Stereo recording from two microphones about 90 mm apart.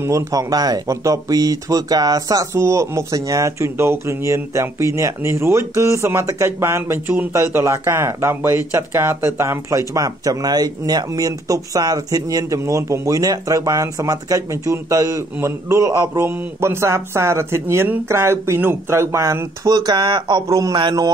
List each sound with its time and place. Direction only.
0.0 s speech: 35° right (ahead or behind); by 20.4 s 60° right (ahead or behind)
20.4 s speech: 40° right (ahead or behind)